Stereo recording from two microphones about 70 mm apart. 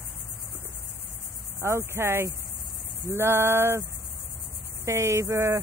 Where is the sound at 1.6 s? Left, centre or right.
Right.